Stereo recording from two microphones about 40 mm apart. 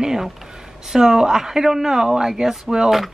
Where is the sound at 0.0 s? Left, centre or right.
Centre.